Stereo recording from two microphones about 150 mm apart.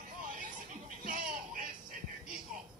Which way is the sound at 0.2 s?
65° right (ahead or behind).